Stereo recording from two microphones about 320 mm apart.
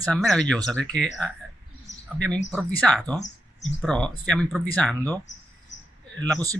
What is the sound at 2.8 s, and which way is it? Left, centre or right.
Speech, centre.